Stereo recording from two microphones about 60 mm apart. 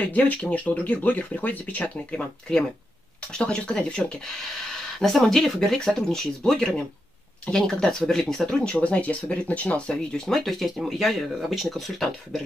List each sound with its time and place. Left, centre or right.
0.0 s speech: left
2.0 s speech: centre
8.5 s speech: left
10.2 s speech: centre